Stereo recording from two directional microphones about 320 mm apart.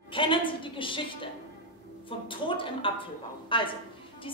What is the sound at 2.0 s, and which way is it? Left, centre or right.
A woman's voice, centre.